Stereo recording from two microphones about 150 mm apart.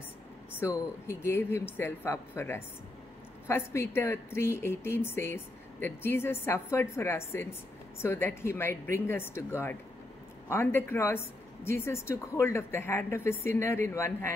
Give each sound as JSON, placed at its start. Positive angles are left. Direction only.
{"t": 0.6, "sound": "speech", "side_deg": 15}